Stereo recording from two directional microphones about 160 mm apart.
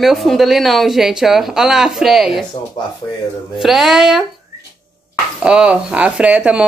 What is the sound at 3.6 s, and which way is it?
Speech, centre (ahead or behind).